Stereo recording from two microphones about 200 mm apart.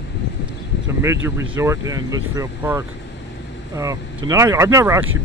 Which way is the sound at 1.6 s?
15° right (ahead or behind).